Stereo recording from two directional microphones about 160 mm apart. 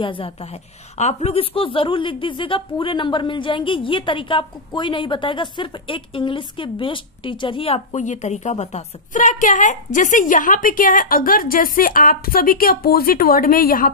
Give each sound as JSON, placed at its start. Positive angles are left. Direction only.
{"t": 0.0, "sound": "a woman's voice", "side_deg": 35}